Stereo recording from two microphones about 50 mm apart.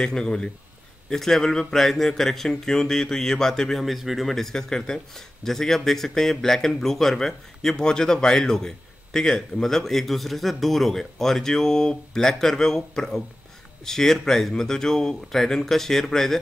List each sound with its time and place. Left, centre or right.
0.0 s speech: centre
3.8 s speech: centre